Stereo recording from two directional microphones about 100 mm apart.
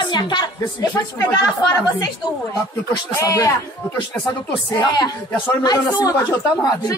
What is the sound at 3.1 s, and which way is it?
Speech, 35° left (ahead or behind).